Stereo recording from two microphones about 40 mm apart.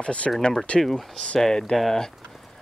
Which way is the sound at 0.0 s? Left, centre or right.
Left.